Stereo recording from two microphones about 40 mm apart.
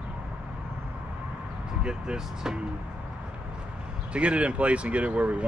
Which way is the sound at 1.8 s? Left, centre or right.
Centre.